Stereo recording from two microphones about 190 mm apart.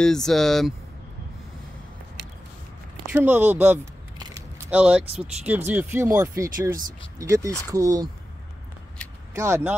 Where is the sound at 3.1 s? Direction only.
10° right (ahead or behind).